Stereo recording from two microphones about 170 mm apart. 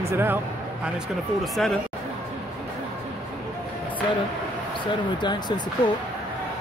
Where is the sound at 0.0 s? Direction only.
15° right (ahead or behind).